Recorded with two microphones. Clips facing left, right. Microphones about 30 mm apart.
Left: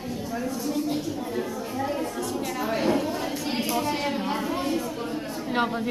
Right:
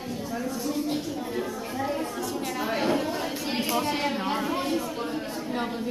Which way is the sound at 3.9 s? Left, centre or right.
Centre.